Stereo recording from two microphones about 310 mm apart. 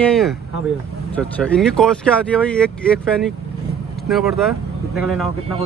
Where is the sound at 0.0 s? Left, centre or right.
Centre.